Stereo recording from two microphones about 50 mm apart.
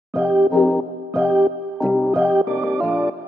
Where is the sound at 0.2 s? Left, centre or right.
Centre.